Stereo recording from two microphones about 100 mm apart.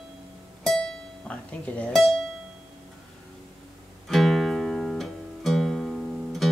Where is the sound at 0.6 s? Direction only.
5° left (ahead or behind).